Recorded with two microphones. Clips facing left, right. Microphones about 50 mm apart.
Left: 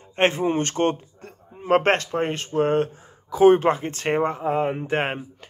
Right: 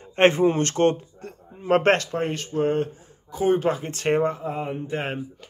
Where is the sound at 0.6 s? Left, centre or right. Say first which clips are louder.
Right 2 dB; left.